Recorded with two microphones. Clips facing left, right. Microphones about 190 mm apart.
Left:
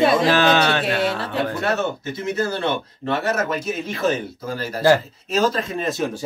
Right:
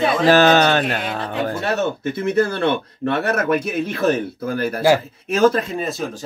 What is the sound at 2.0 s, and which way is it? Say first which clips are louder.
Speech: right 5 dB; 55° right (ahead or behind).